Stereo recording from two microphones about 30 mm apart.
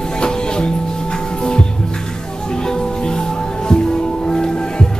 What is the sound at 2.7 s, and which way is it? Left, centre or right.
Music, left.